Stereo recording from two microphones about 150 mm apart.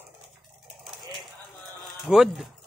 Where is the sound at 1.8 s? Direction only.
Centre (ahead or behind).